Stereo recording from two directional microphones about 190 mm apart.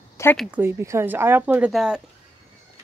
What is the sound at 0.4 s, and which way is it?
Speech, 10° right (ahead or behind).